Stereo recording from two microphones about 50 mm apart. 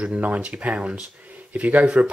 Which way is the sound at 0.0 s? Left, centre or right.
Right.